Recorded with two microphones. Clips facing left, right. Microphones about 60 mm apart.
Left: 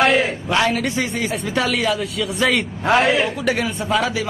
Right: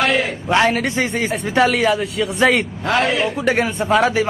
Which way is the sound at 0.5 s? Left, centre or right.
Right.